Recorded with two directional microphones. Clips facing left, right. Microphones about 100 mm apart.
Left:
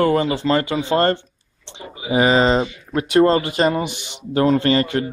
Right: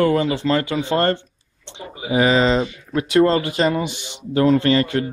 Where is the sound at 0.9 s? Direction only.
20° left (ahead or behind).